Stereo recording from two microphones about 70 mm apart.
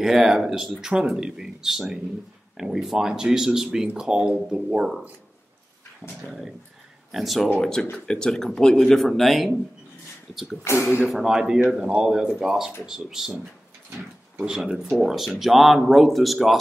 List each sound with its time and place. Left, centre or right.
0.0 s speech: centre
6.0 s speech: centre
7.1 s speech: centre
7.8 s speech: centre
10.6 s speech: left
11.1 s speech: centre